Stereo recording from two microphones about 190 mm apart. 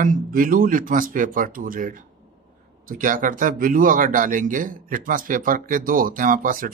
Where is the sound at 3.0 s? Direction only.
45° right (ahead or behind).